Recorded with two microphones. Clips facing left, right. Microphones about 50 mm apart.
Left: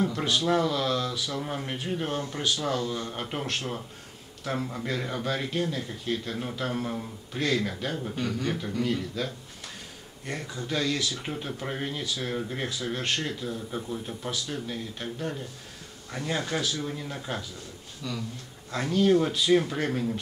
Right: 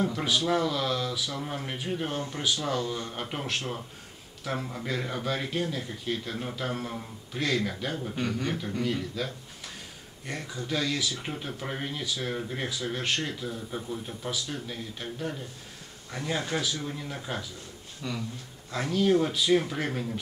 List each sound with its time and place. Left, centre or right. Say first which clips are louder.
0.0 s speech: left 1 dB; centre
8.8 s speech: left 1 dB; centre
18.0 s speech: even; right
18.7 s speech: left 2 dB; centre